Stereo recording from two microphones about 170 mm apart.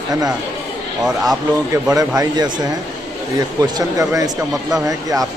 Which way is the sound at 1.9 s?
20° right (ahead or behind).